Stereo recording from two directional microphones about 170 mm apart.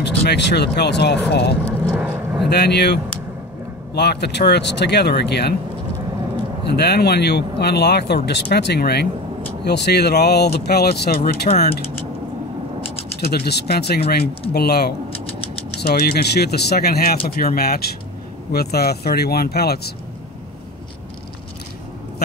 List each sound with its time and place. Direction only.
0.0 s speech: 80° left
1.7 s vehicle: 10° right (ahead or behind)
2.5 s speech: 75° left (ahead or behind)
6.7 s speech: 70° left (ahead or behind)
11.1 s speech: 35° left (ahead or behind)
13.3 s speech: 70° left (ahead or behind)